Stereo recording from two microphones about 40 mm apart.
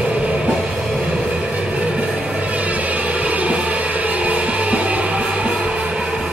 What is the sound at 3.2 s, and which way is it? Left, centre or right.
Music, right.